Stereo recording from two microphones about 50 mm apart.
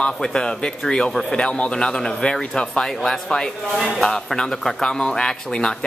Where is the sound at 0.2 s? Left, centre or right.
Centre.